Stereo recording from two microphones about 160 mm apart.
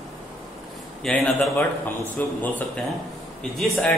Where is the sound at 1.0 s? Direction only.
Centre (ahead or behind).